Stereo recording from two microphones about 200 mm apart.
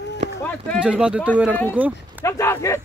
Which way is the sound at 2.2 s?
15° left (ahead or behind).